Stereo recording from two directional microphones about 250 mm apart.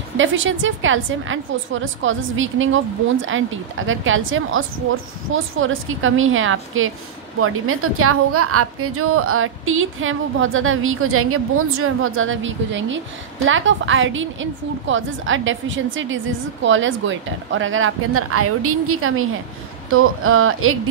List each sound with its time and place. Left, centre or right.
0.2 s a woman's voice: right